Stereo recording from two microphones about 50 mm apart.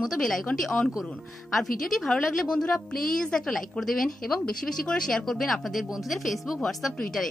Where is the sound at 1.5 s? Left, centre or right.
Centre.